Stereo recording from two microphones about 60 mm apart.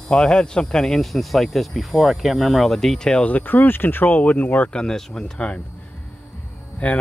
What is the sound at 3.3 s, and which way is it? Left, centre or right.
Speech, left.